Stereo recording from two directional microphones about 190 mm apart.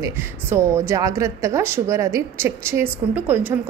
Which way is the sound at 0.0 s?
15° right (ahead or behind).